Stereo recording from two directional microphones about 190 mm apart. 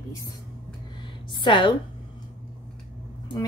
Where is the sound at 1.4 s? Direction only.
25° left (ahead or behind).